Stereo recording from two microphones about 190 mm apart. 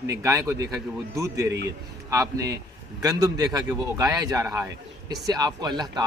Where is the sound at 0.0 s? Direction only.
15° right (ahead or behind).